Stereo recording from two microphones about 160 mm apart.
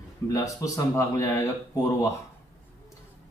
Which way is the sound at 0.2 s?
15° left (ahead or behind).